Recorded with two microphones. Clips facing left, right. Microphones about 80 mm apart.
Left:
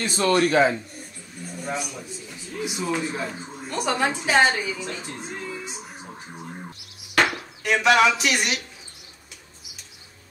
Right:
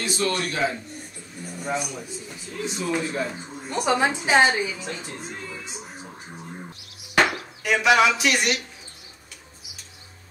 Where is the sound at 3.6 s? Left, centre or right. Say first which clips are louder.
Right 2 dB; centre.